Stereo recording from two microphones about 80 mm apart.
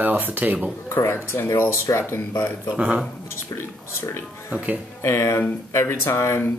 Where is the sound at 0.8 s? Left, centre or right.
Left.